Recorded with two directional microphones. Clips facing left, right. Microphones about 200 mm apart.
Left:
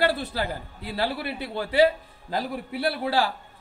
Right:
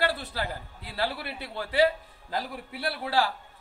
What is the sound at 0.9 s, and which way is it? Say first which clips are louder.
Speech: left 4 dB; 15° left (ahead or behind).